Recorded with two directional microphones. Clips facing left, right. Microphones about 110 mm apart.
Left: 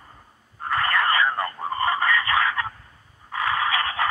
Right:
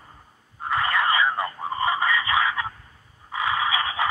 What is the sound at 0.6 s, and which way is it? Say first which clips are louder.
Radio: even; 15° right (ahead or behind).